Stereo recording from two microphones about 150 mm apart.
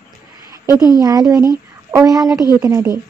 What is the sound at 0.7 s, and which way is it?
Speech, 25° left (ahead or behind).